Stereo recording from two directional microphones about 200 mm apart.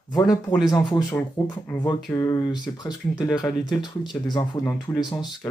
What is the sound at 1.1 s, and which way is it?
Speech, 15° left (ahead or behind).